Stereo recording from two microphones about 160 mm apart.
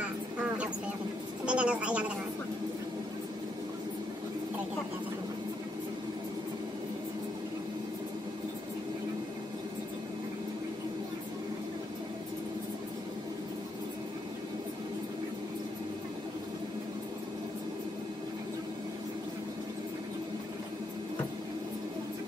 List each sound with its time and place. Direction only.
0.0 s vehicle: 10° right (ahead or behind)
1.4 s a woman's voice: 5° right (ahead or behind)